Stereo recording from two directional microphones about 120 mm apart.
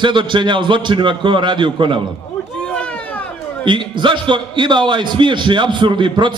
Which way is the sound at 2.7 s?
10° left (ahead or behind).